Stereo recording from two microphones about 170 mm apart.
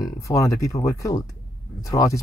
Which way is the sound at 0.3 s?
20° left (ahead or behind).